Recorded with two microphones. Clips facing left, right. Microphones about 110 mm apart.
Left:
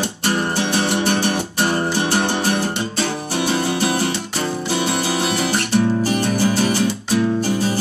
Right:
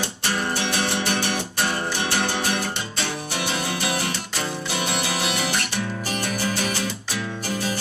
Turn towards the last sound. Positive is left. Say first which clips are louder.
# left 8 dB
turn(degrees=35)  # may be behind; listen again after turning